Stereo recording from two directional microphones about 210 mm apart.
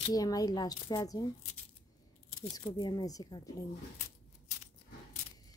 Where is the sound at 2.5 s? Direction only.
20° left (ahead or behind).